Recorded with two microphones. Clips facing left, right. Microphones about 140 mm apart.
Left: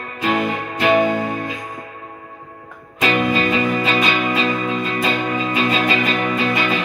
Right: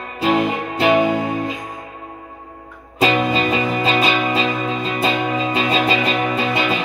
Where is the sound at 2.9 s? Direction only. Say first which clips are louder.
Right 1 dB; 25° right (ahead or behind).